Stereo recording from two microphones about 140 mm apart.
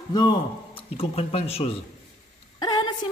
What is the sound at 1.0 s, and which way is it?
Speech, 45° left (ahead or behind).